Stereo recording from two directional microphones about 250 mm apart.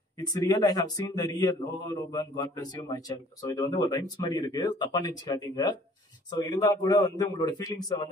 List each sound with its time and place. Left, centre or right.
0.2 s a man's voice: centre